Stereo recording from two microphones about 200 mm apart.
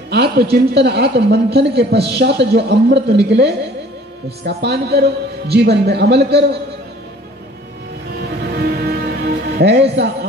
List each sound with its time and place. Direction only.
0.1 s a man's voice: 50° right (ahead or behind)
8.2 s music: 50° right (ahead or behind)
9.6 s speech: 55° right (ahead or behind)